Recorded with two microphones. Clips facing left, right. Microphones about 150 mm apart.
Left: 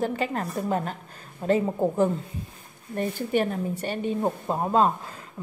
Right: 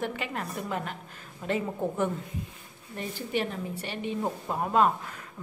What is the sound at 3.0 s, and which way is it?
Speech, 50° left (ahead or behind).